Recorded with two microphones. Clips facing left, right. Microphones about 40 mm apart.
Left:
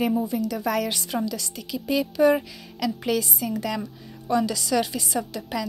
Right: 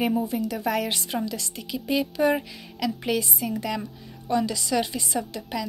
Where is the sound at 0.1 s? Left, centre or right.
Right.